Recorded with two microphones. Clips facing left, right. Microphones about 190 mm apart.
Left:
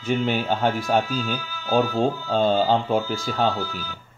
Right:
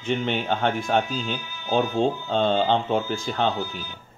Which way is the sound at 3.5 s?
20° right (ahead or behind).